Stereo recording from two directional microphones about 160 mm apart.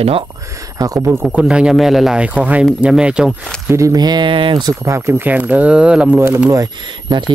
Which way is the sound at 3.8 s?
20° right (ahead or behind).